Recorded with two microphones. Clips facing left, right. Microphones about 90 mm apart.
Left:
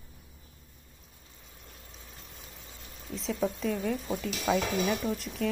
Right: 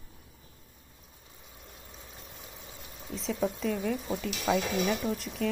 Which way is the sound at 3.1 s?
Centre (ahead or behind).